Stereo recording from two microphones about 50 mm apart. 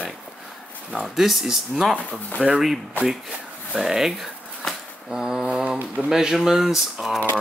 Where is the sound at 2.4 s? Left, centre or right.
Centre.